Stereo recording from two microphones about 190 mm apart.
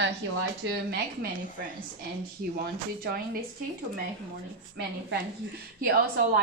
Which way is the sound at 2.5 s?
50° right (ahead or behind).